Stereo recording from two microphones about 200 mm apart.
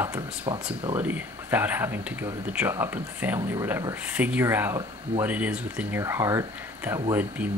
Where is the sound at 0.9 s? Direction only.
10° right (ahead or behind).